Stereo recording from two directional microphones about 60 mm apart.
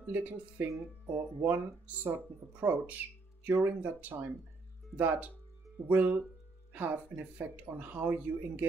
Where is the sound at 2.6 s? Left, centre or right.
Right.